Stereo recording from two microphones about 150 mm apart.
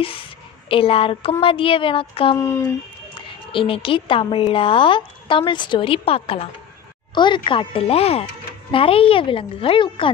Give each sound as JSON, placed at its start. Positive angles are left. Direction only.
{"t": 0.7, "sound": "a woman's voice", "side_deg": 35}
{"t": 2.3, "sound": "speech", "side_deg": 15}
{"t": 3.2, "sound": "a woman's voice", "side_deg": 35}